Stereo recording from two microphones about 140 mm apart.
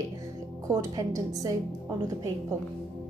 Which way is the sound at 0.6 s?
25° right (ahead or behind).